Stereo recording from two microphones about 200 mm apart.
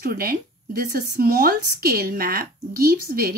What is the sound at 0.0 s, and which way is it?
Speech, 50° right (ahead or behind).